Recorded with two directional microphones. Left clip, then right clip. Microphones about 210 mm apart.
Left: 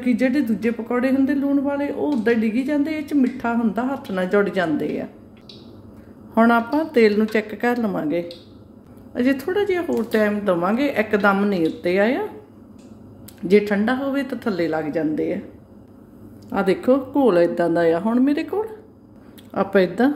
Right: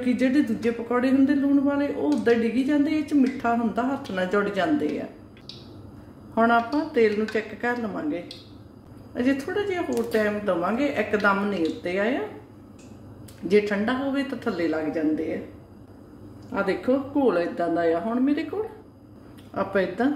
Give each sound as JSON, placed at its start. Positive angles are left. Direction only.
{"t": 0.0, "sound": "speech", "side_deg": 30}
{"t": 6.3, "sound": "speech", "side_deg": 40}
{"t": 13.5, "sound": "speech", "side_deg": 40}
{"t": 16.5, "sound": "speech", "side_deg": 50}
{"t": 19.5, "sound": "speech", "side_deg": 45}